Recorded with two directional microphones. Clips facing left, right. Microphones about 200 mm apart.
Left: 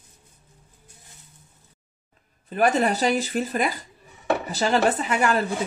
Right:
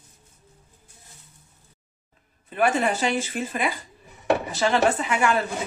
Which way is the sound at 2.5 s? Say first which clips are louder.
Left 2 dB; 40° left (ahead or behind).